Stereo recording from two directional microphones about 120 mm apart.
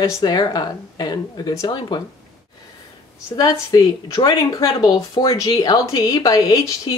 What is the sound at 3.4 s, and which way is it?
Speech, 30° left (ahead or behind).